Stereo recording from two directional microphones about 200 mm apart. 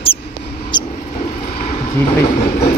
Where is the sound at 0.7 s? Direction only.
20° left (ahead or behind).